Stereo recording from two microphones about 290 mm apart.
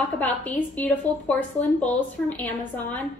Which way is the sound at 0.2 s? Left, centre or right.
Centre.